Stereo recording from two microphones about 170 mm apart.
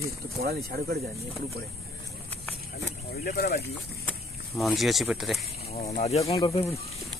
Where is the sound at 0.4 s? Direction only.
65° right (ahead or behind).